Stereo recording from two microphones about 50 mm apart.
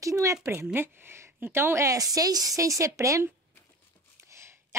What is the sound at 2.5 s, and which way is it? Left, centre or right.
Speech, right.